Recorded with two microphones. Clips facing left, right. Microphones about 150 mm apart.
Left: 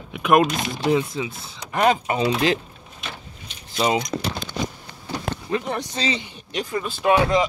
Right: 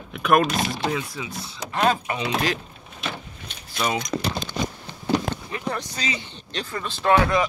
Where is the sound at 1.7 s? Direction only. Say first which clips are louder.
Left 3 dB; 15° left (ahead or behind).